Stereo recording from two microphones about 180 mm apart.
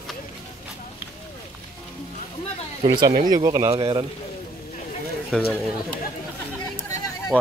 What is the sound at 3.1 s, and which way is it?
Speech, 45° right (ahead or behind).